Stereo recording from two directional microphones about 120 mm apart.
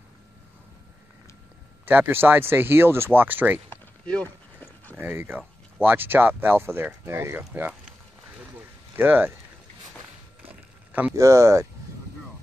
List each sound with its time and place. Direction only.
1.9 s speech: 15° right (ahead or behind)
3.7 s a sound: 10° left (ahead or behind)
5.0 s speech: 20° right (ahead or behind)
8.9 s speech: 15° right (ahead or behind)
10.5 s a sound: 10° right (ahead or behind)
11.1 s speech: 25° right (ahead or behind)